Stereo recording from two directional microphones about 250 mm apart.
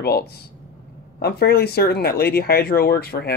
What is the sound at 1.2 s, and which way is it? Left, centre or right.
Speech, left.